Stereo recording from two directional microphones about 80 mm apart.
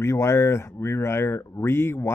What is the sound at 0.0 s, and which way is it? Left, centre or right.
Speech, left.